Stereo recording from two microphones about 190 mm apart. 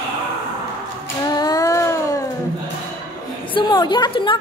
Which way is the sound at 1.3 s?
20° left (ahead or behind).